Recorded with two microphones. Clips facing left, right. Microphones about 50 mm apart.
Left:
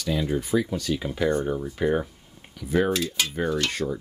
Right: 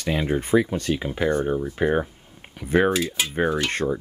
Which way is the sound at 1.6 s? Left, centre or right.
Right.